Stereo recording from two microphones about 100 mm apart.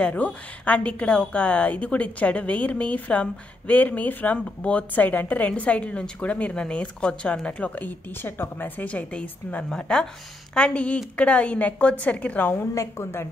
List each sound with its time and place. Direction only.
0.0 s a woman's voice: 15° left (ahead or behind)